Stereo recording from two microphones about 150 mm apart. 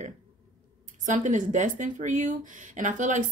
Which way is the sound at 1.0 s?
55° right (ahead or behind).